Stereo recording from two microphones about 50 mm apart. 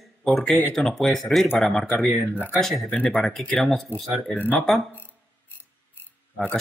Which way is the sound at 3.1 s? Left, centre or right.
Centre.